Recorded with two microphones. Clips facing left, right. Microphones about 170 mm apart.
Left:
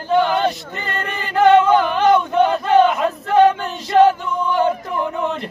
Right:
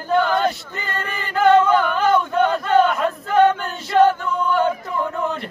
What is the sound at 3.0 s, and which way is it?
Male singing, 5° left (ahead or behind).